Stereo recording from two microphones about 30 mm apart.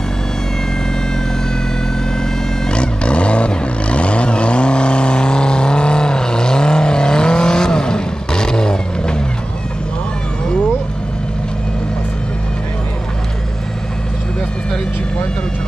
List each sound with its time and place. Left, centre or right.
2.7 s vehicle: left